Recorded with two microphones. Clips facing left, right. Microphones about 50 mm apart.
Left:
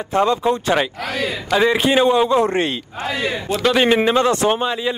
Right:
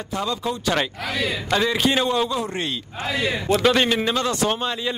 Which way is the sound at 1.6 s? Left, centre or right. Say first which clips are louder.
Left 7 dB; left.